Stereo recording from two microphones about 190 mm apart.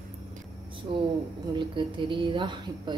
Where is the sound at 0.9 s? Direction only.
25° right (ahead or behind).